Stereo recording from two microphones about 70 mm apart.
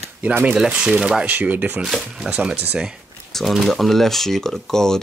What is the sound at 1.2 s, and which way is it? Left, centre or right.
Speech, right.